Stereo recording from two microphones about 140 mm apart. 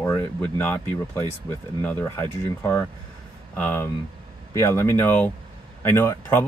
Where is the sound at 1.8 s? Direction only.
20° left (ahead or behind).